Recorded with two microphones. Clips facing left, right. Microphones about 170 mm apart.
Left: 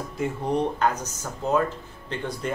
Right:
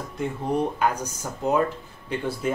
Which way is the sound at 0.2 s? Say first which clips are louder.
Even; 5° right (ahead or behind).